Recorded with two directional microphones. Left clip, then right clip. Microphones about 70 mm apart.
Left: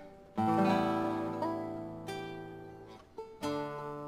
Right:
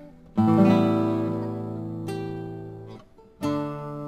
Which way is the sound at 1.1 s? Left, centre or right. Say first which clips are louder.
Right 8 dB; centre.